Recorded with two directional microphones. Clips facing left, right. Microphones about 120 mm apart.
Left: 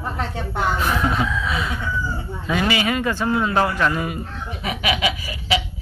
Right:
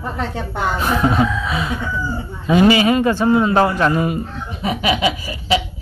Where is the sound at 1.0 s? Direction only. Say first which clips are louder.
Right 5 dB; 25° right (ahead or behind).